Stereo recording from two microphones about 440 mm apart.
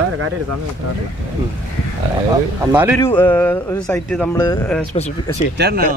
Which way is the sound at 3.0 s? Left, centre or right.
Centre.